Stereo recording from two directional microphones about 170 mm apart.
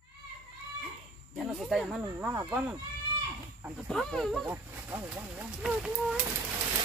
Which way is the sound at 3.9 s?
5° left (ahead or behind).